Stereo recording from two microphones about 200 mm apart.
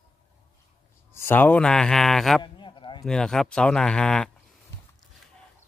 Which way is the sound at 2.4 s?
25° left (ahead or behind).